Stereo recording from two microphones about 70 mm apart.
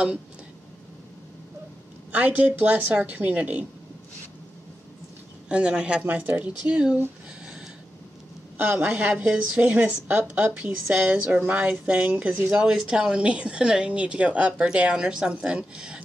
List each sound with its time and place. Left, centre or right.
2.1 s a woman's voice: right
5.5 s speech: centre
6.0 s speech: right
8.5 s a woman's voice: right
12.5 s speech: centre